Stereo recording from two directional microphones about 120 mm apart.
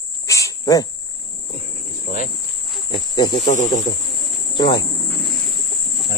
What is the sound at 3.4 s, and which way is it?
Speech, 90° left.